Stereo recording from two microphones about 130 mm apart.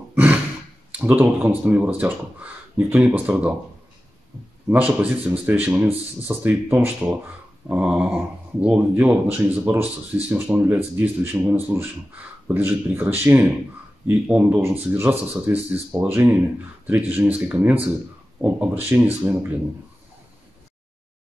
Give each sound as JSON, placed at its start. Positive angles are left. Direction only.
{"t": 0.1, "sound": "a sound", "side_deg": -15}
{"t": 0.9, "sound": "speech", "side_deg": -10}
{"t": 4.6, "sound": "speech", "side_deg": -10}